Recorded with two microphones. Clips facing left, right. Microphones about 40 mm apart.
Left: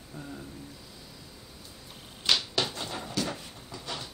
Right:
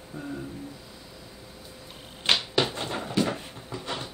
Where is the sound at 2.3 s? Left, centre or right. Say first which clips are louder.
Right 4 dB; centre.